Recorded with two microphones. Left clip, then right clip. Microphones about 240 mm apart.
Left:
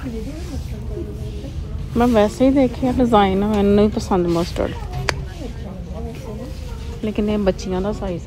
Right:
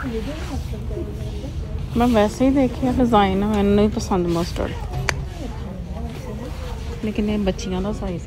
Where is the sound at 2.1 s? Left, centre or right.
Centre.